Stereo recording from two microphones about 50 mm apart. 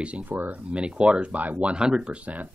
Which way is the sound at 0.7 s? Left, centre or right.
Centre.